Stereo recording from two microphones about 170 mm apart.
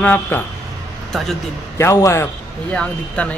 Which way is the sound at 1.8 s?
15° left (ahead or behind).